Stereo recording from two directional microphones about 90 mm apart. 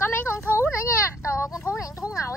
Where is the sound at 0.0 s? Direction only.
25° left (ahead or behind).